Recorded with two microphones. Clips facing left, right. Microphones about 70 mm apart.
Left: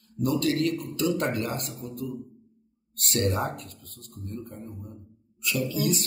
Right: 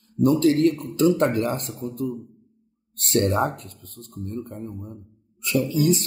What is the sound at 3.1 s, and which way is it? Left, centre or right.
Speech, right.